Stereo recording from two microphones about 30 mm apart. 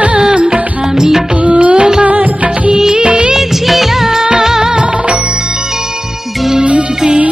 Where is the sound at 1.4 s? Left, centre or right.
Right.